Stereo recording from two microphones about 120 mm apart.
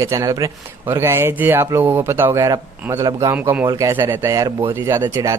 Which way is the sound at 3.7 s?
25° right (ahead or behind).